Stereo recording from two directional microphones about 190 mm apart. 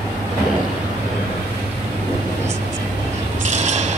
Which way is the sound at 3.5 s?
40° right (ahead or behind).